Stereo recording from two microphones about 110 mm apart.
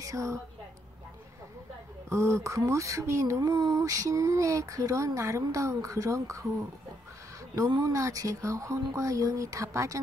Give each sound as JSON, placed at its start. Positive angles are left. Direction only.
{"t": 0.0, "sound": "a woman's voice", "side_deg": -30}
{"t": 2.0, "sound": "speech", "side_deg": -25}
{"t": 3.3, "sound": "speech", "side_deg": -40}
{"t": 7.8, "sound": "speech", "side_deg": -30}